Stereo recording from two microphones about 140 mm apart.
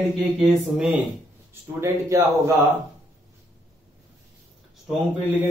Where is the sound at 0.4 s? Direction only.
10° right (ahead or behind).